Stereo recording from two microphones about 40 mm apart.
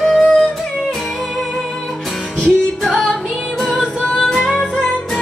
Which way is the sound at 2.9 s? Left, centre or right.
Left.